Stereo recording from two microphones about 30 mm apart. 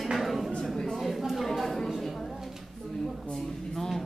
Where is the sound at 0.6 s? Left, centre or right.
Centre.